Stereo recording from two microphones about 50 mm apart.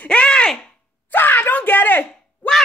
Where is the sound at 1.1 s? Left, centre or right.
Left.